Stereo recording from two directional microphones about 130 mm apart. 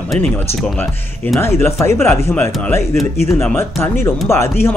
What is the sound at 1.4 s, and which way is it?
Speech, 20° left (ahead or behind).